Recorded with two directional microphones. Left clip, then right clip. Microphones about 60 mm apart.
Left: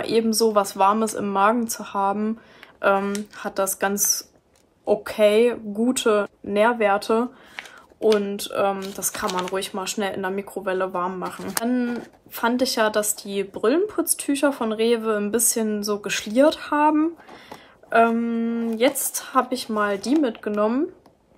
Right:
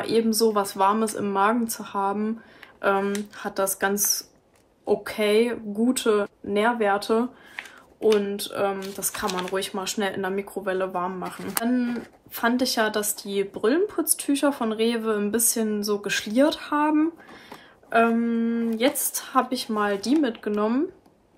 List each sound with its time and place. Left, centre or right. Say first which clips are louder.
0.0 s a woman's voice: left 1 dB; left